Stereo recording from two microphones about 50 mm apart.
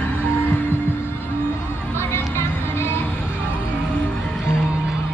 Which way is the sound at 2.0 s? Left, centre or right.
Left.